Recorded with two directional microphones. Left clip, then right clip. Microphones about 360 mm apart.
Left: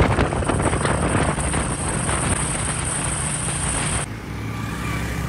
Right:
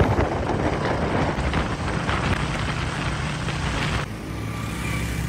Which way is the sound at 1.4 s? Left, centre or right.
Left.